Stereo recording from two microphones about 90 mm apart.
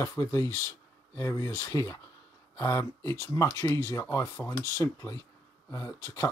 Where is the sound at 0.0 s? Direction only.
35° left (ahead or behind).